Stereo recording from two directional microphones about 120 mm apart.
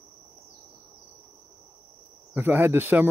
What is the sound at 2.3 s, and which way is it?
Speech, 15° right (ahead or behind).